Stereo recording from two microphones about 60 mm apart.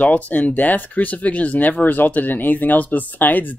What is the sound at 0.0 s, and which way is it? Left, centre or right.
Speech, left.